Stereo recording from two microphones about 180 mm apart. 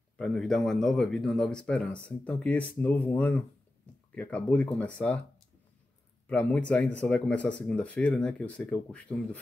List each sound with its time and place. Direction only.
0.2 s speech: 5° left (ahead or behind)
6.2 s a man's voice: 5° left (ahead or behind)